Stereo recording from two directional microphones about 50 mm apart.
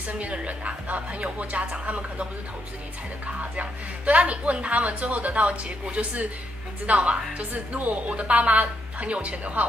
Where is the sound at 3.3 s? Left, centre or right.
Right.